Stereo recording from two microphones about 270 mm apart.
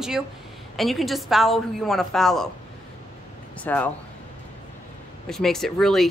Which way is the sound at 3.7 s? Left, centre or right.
Centre.